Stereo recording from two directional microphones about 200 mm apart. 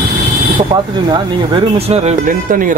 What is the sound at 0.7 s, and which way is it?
A man's voice, 25° right (ahead or behind).